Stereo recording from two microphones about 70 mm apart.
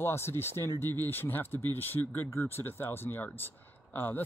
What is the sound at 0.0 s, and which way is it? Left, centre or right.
Speech, left.